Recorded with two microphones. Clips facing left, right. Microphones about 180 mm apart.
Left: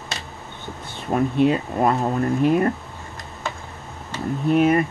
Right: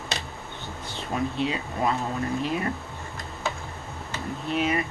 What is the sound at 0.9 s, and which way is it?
Speech, 50° left (ahead or behind).